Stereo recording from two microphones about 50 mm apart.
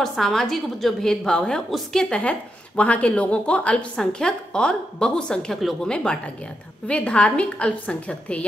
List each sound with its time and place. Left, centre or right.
0.0 s a woman's voice: centre
1.0 s a woman's voice: centre
2.0 s a woman's voice: left